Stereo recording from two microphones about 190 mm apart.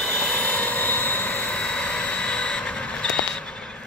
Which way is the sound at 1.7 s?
5° left (ahead or behind).